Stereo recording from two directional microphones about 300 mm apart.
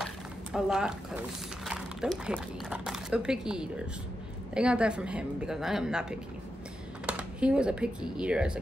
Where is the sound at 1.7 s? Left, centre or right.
Centre.